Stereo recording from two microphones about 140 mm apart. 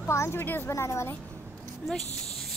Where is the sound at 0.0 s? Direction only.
20° left (ahead or behind).